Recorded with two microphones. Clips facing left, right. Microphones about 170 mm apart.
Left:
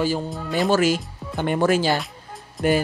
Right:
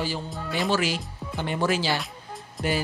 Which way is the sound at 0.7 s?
45° left (ahead or behind).